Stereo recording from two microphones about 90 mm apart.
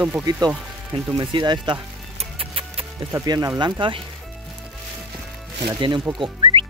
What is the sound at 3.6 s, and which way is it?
Speech, 60° right (ahead or behind).